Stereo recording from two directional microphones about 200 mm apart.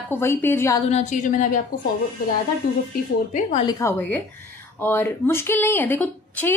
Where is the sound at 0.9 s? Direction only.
40° left (ahead or behind).